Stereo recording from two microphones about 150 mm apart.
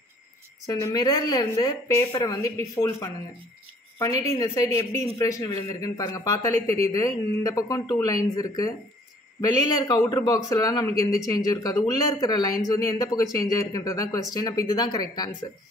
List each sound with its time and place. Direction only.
0.7 s a man's voice: 25° left (ahead or behind)